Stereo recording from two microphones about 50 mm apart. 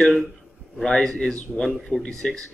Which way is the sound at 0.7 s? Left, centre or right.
Centre.